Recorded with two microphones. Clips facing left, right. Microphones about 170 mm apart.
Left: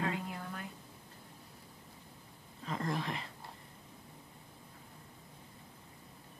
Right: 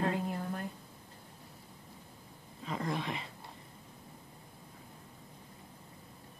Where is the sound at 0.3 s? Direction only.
40° right (ahead or behind).